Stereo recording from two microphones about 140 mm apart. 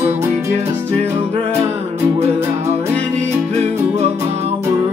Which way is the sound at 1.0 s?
45° right (ahead or behind).